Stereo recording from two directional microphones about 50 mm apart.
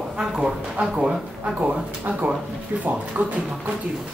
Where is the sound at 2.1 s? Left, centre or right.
Right.